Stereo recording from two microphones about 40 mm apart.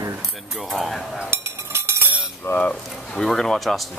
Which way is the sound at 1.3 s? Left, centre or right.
Right.